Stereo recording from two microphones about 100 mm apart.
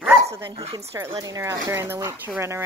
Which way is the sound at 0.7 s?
30° right (ahead or behind).